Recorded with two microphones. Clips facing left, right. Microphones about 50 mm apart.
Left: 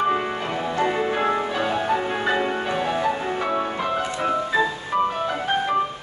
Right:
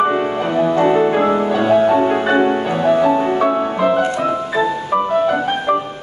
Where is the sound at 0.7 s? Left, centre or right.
Right.